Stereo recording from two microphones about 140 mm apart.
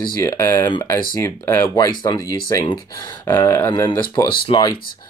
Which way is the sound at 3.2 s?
15° left (ahead or behind).